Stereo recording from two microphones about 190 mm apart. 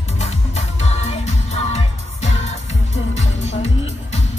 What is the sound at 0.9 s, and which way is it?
Music, 35° left (ahead or behind).